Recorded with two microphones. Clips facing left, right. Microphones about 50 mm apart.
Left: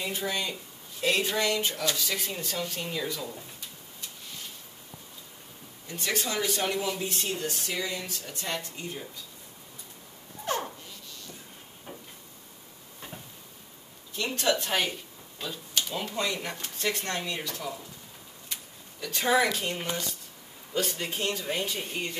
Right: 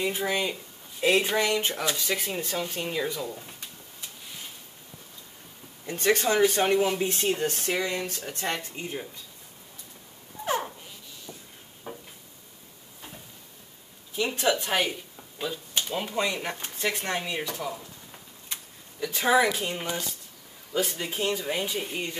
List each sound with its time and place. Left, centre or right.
0.0 s speech: centre
5.9 s speech: right
10.4 s a sound: centre
11.9 s a sound: centre
14.1 s speech: centre
18.9 s speech: centre